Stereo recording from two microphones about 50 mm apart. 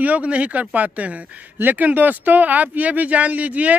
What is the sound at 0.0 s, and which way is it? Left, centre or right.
Speech, right.